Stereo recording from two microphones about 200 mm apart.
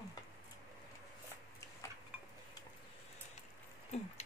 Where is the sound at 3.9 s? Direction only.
35° left (ahead or behind).